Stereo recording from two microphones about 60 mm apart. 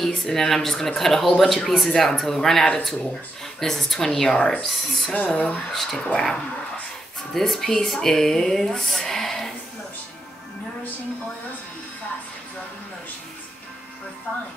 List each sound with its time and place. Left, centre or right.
0.0 s a woman's voice: centre
4.6 s speech: centre
5.1 s speech: left
5.7 s speech: centre
5.9 s a woman's voice: centre